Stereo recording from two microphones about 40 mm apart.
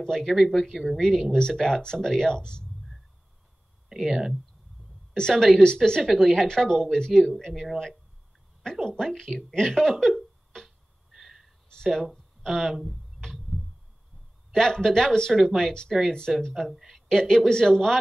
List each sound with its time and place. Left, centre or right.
0.0 s a woman's voice: centre
4.1 s speech: centre
5.3 s a woman's voice: centre
5.8 s speech: centre
6.1 s a woman's voice: centre
7.5 s speech: centre
11.1 s a sound: centre
11.7 s speech: centre
14.5 s a woman's voice: centre
16.1 s a woman's voice: centre
16.5 s a woman's voice: centre